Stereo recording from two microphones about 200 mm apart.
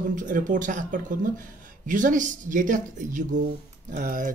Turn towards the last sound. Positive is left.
turn(degrees=-45)  # may be behind; listen again after turning